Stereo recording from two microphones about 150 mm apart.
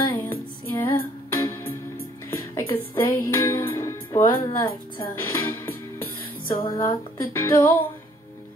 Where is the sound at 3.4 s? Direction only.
15° left (ahead or behind).